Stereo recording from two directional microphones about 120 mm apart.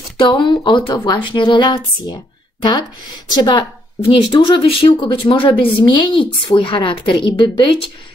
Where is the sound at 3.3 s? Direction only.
40° left (ahead or behind).